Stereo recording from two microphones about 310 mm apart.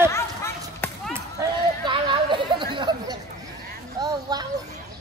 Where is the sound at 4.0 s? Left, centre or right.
Centre.